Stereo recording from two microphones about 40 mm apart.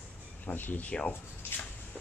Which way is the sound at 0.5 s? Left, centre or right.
Left.